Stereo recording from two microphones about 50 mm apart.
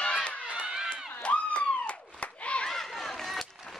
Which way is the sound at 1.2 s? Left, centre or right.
Left.